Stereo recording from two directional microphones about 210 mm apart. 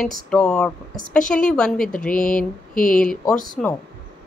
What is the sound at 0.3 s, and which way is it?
A woman's voice, 5° left (ahead or behind).